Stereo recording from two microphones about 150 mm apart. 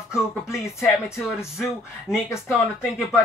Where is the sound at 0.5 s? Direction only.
20° left (ahead or behind).